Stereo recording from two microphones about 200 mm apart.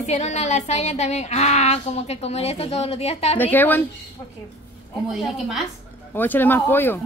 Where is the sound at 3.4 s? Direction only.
10° left (ahead or behind).